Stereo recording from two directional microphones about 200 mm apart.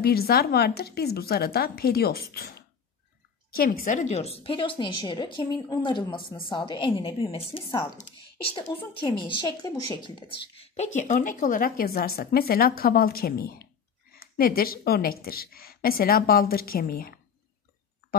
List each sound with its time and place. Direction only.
0.0 s a woman's voice: 50° left (ahead or behind)